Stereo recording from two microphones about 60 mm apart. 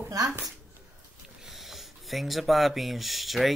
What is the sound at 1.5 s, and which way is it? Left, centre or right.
Speech, centre.